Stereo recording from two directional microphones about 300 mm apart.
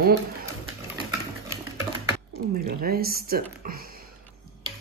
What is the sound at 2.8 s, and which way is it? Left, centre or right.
A man's voice, right.